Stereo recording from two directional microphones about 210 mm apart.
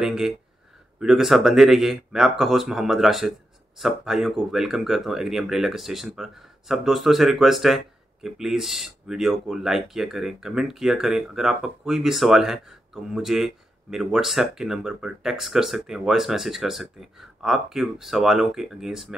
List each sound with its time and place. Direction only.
0.0 s speech: centre (ahead or behind)